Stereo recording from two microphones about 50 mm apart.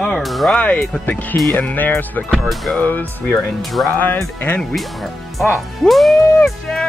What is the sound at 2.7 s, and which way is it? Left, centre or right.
Speech, left.